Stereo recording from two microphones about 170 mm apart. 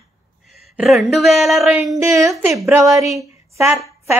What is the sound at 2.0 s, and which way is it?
Speech, 20° right (ahead or behind).